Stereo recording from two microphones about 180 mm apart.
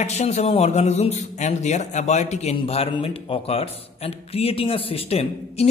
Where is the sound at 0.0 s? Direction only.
40° left (ahead or behind).